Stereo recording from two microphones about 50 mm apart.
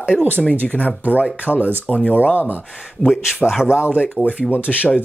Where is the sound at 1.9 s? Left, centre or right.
Centre.